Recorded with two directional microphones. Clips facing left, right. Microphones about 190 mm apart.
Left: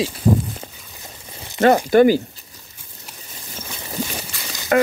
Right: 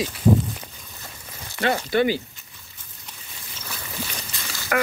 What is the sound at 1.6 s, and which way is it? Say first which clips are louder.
Speech: left 8 dB; 45° left (ahead or behind).